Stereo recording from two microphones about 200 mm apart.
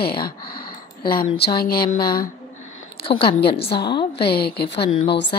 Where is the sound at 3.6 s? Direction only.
55° left (ahead or behind).